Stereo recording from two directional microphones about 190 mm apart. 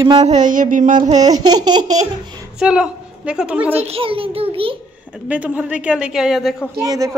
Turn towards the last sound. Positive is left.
turn(degrees=-20)  # may be behind; listen again after turning